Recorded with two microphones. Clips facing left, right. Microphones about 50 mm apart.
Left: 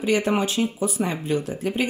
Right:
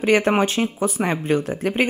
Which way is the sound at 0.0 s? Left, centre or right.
Right.